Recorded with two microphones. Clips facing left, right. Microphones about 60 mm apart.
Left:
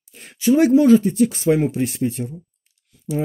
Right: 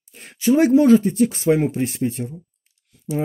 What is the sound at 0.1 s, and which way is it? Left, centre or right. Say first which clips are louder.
Speech: left 1 dB; right.